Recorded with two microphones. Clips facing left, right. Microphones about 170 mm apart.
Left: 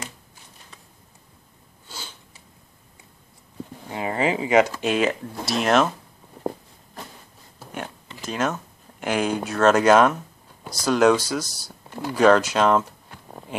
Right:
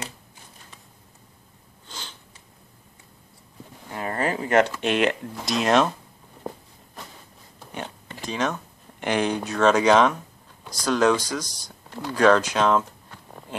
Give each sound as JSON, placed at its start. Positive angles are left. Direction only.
{"t": 1.9, "sound": "sniff", "side_deg": 10}
{"t": 3.9, "sound": "speech", "side_deg": 10}
{"t": 7.5, "sound": "a sound", "side_deg": 5}
{"t": 8.3, "sound": "speech", "side_deg": 5}